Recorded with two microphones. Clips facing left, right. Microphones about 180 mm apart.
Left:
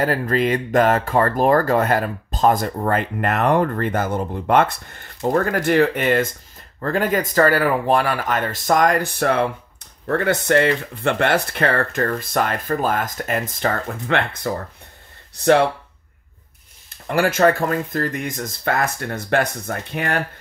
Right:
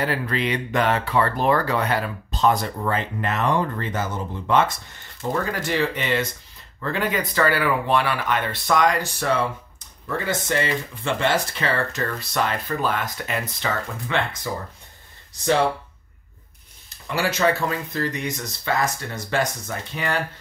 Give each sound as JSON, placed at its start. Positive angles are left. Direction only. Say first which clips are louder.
{"t": 0.0, "sound": "speech", "louder": "left 5 dB", "side_deg": 45}
{"t": 17.1, "sound": "speech", "louder": "left 5 dB", "side_deg": 50}